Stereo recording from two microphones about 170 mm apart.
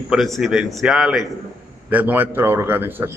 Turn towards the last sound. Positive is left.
turn(degrees=-15)  # may be behind; listen again after turning